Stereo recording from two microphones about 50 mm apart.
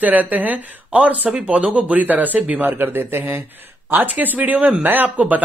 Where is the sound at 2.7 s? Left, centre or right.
Right.